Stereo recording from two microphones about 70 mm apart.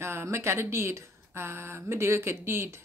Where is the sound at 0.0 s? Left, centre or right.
Right.